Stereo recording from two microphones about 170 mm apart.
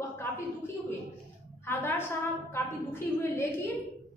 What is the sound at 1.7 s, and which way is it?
A woman's voice, 15° left (ahead or behind).